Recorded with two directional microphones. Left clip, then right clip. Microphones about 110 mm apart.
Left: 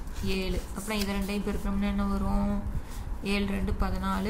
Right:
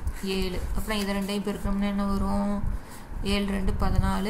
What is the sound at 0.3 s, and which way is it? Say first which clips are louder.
A woman's voice: right 2 dB; 35° right (ahead or behind).